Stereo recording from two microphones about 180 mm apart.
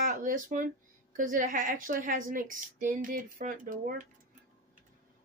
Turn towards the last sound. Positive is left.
turn(degrees=-50)  # may be behind; listen again after turning